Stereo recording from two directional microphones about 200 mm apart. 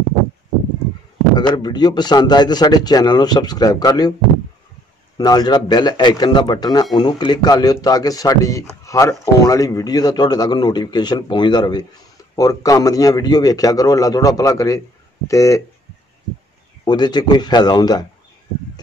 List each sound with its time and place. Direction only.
1.5 s speech: 20° left (ahead or behind)
5.1 s a man's voice: 20° left (ahead or behind)
16.8 s speech: 20° left (ahead or behind)